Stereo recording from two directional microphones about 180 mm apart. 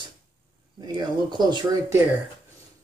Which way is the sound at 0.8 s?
25° right (ahead or behind).